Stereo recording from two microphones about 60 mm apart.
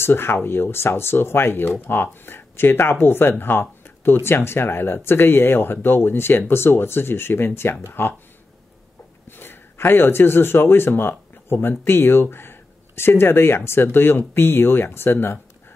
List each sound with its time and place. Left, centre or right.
0.0 s speech: left
9.3 s speech: left